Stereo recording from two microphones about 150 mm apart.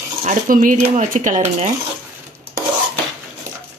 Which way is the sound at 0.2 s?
60° right (ahead or behind).